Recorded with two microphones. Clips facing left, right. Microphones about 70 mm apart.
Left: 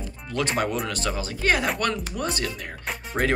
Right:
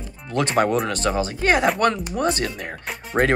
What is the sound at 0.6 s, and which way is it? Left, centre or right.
Speech, right.